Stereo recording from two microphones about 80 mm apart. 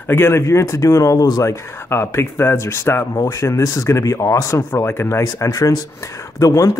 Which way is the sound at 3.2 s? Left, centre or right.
Left.